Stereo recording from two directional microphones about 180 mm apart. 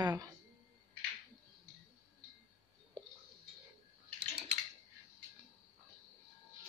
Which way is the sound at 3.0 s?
25° right (ahead or behind).